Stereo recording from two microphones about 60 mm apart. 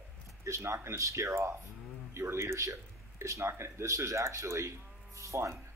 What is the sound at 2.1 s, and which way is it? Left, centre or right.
Speech, right.